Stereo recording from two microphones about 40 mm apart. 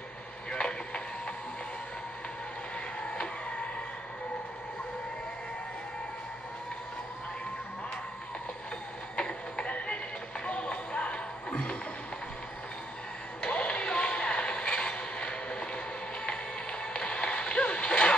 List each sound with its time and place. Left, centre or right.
0.5 s music: left
3.0 s a sound: left
9.1 s a sound: left
9.7 s music: left
13.4 s music: left
16.8 s music: left